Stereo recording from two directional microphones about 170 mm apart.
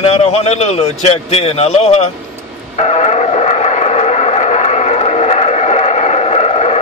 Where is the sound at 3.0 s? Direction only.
40° left (ahead or behind).